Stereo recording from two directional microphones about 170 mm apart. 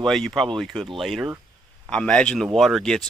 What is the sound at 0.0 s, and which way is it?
Speech, centre (ahead or behind).